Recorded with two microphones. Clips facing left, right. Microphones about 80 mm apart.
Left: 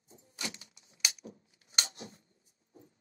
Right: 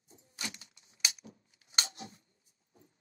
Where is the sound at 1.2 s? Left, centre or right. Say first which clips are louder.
Left 5 dB; left.